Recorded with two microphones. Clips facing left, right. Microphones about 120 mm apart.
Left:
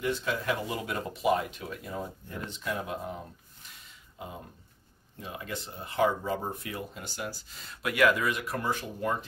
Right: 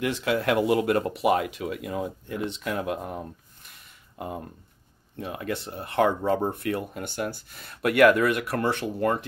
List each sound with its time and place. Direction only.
0.0 s speech: 75° right (ahead or behind); by 3.2 s 60° right (ahead or behind)
3.6 s a sound: 55° right (ahead or behind)
5.2 s speech: 60° right (ahead or behind)